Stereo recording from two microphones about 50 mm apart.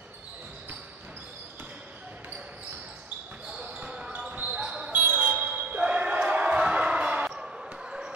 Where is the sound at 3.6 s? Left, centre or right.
Centre.